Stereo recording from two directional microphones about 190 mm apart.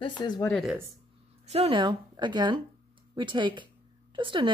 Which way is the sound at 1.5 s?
30° right (ahead or behind).